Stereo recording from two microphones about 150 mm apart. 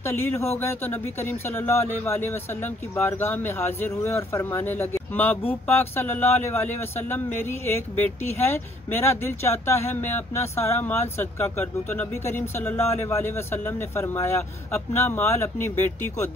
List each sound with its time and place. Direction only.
0.0 s speech: 15° left (ahead or behind)